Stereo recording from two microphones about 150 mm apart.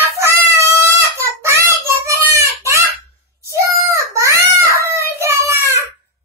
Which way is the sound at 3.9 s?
20° right (ahead or behind).